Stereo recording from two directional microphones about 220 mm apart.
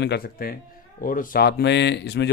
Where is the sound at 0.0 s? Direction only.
45° left (ahead or behind).